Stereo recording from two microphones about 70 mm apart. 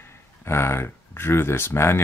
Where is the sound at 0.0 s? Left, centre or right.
Left.